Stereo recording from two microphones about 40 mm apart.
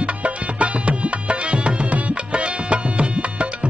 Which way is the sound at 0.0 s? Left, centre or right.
Right.